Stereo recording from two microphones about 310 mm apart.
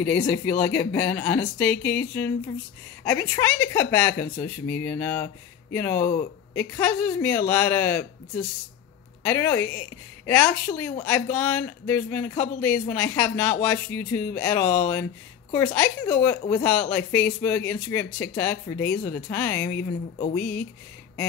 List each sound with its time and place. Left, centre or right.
0.0 s speech: centre
9.2 s speech: centre